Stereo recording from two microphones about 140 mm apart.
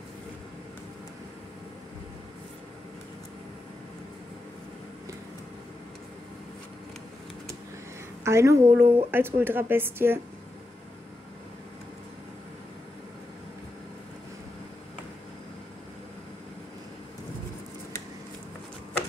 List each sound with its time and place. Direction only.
8.2 s a woman's voice: 20° right (ahead or behind)